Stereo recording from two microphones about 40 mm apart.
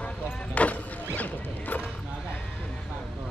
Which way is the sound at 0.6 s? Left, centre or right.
Left.